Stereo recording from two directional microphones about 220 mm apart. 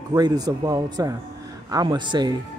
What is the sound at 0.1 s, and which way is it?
Speech, 15° right (ahead or behind).